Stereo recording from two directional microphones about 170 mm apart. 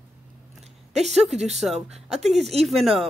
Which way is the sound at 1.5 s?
Centre (ahead or behind).